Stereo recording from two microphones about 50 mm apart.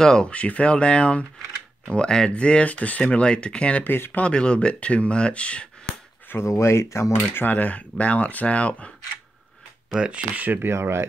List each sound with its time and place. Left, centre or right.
0.0 s speech: centre
3.8 s speech: left
4.2 s speech: centre
6.4 s speech: left
7.3 s speech: left
9.8 s speech: centre
10.3 s speech: right
10.7 s speech: right